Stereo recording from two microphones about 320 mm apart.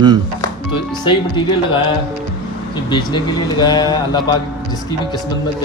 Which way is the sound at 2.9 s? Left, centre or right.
Centre.